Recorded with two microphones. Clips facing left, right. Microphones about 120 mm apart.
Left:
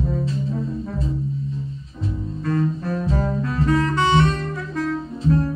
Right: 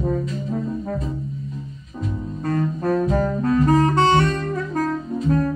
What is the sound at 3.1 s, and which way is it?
Saxophone, 45° right (ahead or behind).